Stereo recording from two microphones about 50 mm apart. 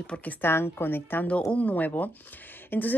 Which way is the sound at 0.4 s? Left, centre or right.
Left.